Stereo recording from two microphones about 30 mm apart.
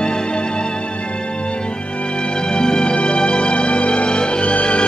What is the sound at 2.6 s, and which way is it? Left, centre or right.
Music, left.